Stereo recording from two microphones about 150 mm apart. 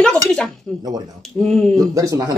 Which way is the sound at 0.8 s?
25° right (ahead or behind).